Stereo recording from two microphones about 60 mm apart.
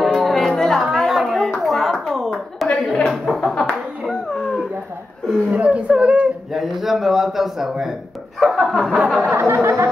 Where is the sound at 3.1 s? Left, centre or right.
Centre.